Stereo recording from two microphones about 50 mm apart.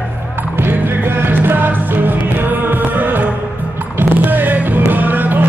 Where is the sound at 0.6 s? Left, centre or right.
Right.